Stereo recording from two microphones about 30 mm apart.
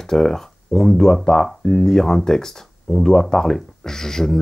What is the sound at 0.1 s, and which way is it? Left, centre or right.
Speech, centre.